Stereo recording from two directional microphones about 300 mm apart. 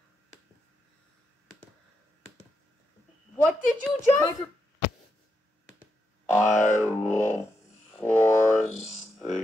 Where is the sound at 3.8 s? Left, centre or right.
Centre.